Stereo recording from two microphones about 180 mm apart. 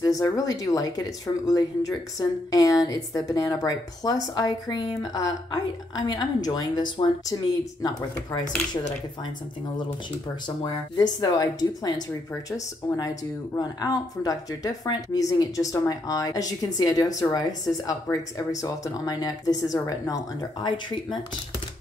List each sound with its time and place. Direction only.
0.0 s speech: 20° left (ahead or behind)
10.6 s speech: 25° left (ahead or behind)